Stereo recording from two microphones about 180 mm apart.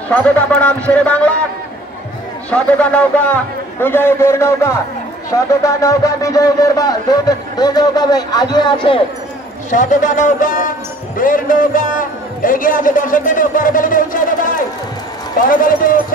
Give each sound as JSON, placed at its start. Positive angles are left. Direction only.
{"t": 0.1, "sound": "a man's voice", "side_deg": 5}
{"t": 2.5, "sound": "a man's voice", "side_deg": 5}
{"t": 9.7, "sound": "a man's voice", "side_deg": 45}